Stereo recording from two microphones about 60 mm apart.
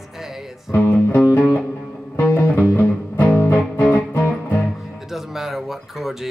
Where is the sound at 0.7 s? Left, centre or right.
Left.